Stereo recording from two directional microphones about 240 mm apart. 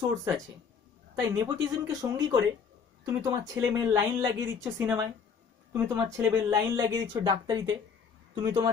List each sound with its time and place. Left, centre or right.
1.1 s speech: centre